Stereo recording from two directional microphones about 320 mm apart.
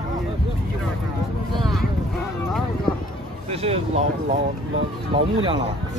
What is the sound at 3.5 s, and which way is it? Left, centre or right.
Speech, centre.